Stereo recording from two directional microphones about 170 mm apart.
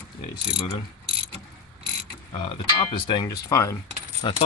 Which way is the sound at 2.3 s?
30° left (ahead or behind).